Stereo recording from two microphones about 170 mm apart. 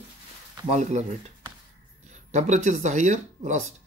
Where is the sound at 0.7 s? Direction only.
40° right (ahead or behind).